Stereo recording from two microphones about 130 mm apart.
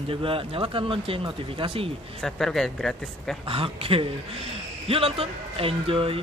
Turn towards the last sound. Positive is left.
turn(degrees=-45)  # may be behind; listen again after turning